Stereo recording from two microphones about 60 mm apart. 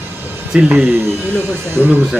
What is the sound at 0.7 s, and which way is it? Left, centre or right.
Speech, right.